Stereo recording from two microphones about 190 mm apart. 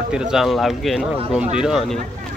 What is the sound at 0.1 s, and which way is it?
Speech, 5° right (ahead or behind).